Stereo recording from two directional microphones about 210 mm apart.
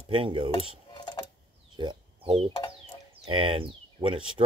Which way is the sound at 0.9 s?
20° left (ahead or behind).